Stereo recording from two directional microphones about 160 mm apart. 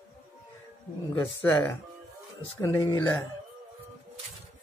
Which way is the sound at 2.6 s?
20° left (ahead or behind).